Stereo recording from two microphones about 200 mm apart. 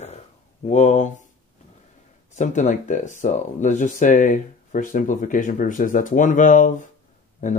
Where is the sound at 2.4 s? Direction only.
35° left (ahead or behind).